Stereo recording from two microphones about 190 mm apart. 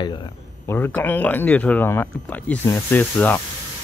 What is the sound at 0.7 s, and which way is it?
Speech, 10° left (ahead or behind).